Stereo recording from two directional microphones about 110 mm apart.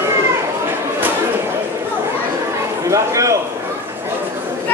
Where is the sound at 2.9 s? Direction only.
30° right (ahead or behind).